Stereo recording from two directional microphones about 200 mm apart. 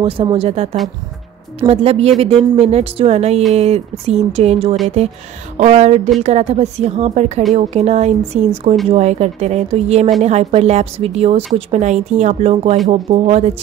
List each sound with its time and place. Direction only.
0.0 s a woman's voice: 25° right (ahead or behind)